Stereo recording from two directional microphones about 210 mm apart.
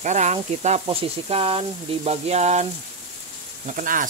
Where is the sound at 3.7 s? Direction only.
40° right (ahead or behind).